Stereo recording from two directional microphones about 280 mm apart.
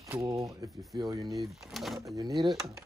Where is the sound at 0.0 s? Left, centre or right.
Centre.